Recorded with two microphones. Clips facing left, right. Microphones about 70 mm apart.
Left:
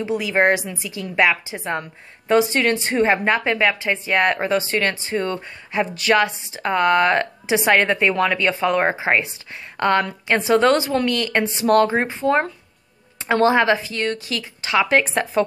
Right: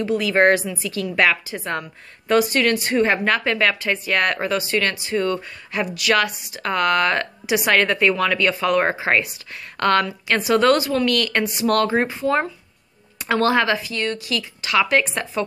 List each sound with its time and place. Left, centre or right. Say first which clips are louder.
0.0 s a woman's voice: right 2 dB; centre